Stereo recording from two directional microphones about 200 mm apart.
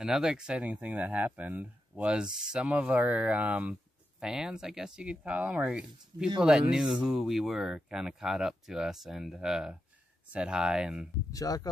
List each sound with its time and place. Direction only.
0.0 s speech: 5° right (ahead or behind)
11.3 s speech: 20° left (ahead or behind)